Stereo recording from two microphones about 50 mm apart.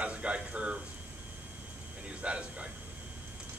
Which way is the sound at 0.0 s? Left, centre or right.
Right.